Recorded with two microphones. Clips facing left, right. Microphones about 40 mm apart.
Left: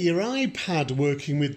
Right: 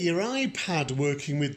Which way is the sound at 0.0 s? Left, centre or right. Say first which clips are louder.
Left 3 dB; centre.